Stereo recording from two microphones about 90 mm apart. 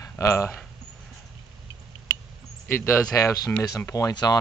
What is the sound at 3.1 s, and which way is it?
Speech, 40° left (ahead or behind).